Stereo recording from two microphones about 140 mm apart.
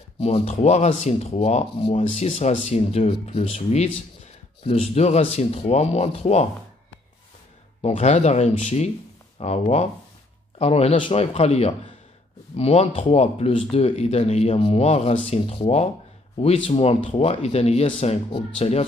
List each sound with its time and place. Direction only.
0.5 s speech: 55° left (ahead or behind)
2.0 s speech: 65° left (ahead or behind); by 3.4 s 45° left (ahead or behind)
3.5 s speech: 55° left (ahead or behind)
7.8 s speech: 50° left (ahead or behind)